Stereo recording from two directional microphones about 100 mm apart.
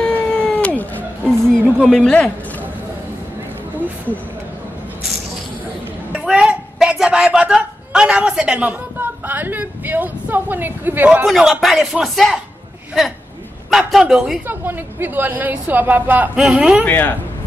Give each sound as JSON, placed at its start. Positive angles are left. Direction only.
{"t": 0.0, "sound": "cat", "side_deg": 10}
{"t": 1.5, "sound": "speech", "side_deg": 5}
{"t": 6.1, "sound": "a sound", "side_deg": -10}
{"t": 11.2, "sound": "speech", "side_deg": 0}
{"t": 13.7, "sound": "speech", "side_deg": -5}
{"t": 14.5, "sound": "a woman's voice", "side_deg": -20}
{"t": 16.8, "sound": "speech", "side_deg": 20}